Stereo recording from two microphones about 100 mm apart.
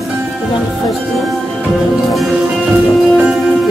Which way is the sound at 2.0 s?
Centre (ahead or behind).